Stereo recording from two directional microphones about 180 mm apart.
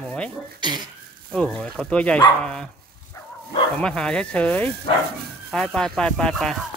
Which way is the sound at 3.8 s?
5° left (ahead or behind).